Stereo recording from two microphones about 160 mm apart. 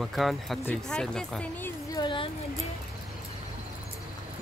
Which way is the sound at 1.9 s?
30° left (ahead or behind).